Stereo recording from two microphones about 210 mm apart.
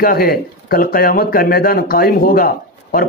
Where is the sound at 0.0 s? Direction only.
45° left (ahead or behind).